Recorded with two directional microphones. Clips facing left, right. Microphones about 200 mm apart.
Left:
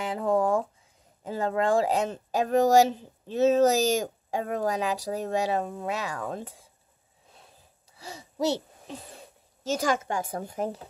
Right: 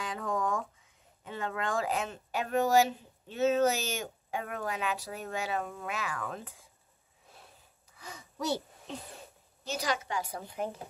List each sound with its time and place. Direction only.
0.0 s a sound: 30° left (ahead or behind)
1.2 s speech: 35° left (ahead or behind)
7.9 s speech: 30° left (ahead or behind)
9.7 s a woman's voice: 50° left (ahead or behind)